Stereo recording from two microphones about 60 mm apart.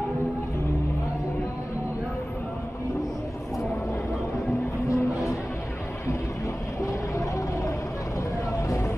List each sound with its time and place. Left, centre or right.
4.8 s music: left
6.9 s vehicle: left